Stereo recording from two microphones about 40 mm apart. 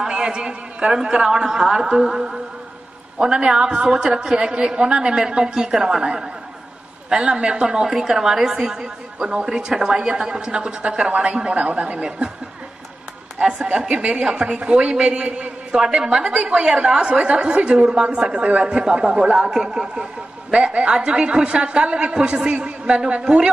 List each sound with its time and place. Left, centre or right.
0.1 s a woman's voice: right
7.6 s a woman's voice: centre
13.4 s a woman's voice: centre
15.7 s a woman's voice: centre
20.5 s a woman's voice: right